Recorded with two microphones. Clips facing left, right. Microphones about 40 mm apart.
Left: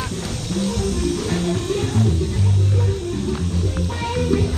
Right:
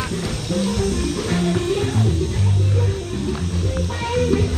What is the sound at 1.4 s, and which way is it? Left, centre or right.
Music, centre.